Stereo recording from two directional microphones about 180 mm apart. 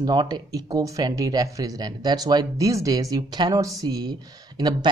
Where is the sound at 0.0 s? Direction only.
25° right (ahead or behind).